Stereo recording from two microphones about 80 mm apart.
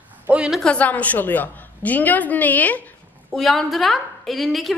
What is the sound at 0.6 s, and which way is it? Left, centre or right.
A woman's voice, centre.